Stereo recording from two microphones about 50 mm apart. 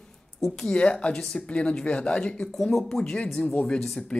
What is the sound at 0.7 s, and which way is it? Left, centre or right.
Speech, left.